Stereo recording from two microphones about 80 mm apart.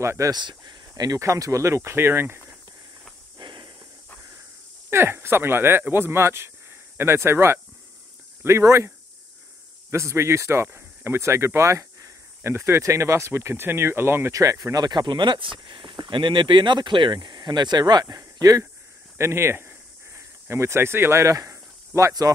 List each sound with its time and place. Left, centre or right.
0.0 s speech: right
0.3 s speech: right
3.3 s a sound: right
4.8 s speech: right
14.3 s speech: right
18.1 s speech: right
19.1 s snake: right